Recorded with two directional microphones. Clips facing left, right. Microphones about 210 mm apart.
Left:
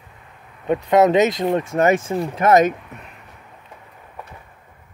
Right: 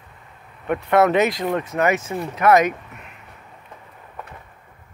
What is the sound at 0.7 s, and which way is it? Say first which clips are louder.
Speech: left 2 dB; 15° left (ahead or behind).